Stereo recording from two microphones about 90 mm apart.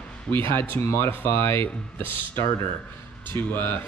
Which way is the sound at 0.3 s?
25° left (ahead or behind).